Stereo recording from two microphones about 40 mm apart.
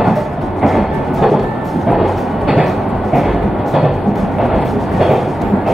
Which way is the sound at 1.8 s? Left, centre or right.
Centre.